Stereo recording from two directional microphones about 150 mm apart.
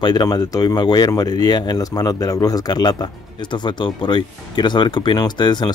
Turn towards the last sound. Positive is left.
turn(degrees=30)  # may be behind; listen again after turning